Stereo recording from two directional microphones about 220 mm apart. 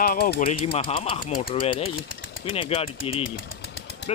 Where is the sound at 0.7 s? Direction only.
25° left (ahead or behind).